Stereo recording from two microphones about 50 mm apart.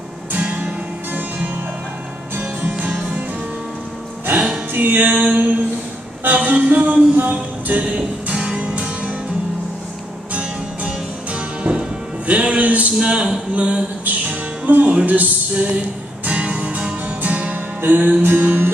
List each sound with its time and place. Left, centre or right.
0.3 s music: right
4.7 s music: right
6.2 s a sound: right
10.3 s music: right
12.3 s speech: right
14.6 s music: right
16.3 s music: right